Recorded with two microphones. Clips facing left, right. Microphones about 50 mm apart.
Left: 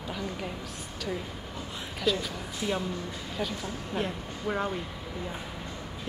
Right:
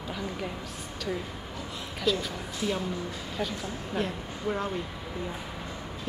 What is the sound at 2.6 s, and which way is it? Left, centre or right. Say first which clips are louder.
Speech: even; centre.